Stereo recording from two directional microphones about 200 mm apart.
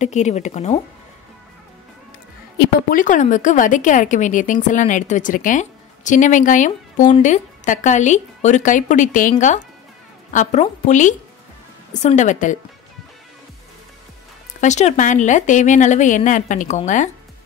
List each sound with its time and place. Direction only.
0.0 s speech: 35° left (ahead or behind)
2.9 s speech: 40° left (ahead or behind)
14.6 s speech: 35° left (ahead or behind)